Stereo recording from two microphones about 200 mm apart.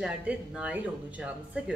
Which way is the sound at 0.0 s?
5° right (ahead or behind).